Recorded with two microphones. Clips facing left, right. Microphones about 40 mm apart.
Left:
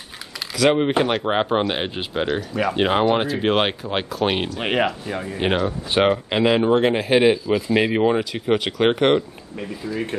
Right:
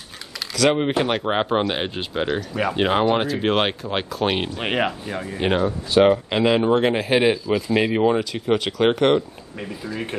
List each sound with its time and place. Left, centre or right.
0.6 s speech: centre
5.7 s speech: left
6.0 s speech: centre
9.9 s speech: right